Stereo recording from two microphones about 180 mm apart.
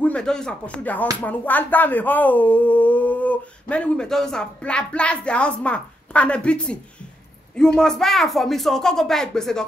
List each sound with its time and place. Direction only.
0.0 s speech: 5° left (ahead or behind)